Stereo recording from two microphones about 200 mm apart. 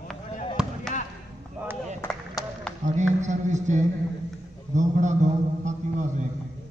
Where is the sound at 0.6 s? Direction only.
5° left (ahead or behind).